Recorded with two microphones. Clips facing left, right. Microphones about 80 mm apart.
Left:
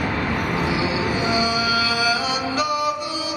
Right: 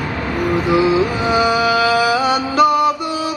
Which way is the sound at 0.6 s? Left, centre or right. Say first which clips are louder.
Right 8 dB; right.